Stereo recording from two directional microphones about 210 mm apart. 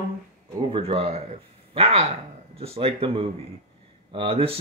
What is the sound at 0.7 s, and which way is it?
Speech, 25° right (ahead or behind).